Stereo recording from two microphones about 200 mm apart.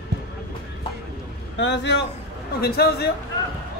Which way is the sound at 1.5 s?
60° left (ahead or behind).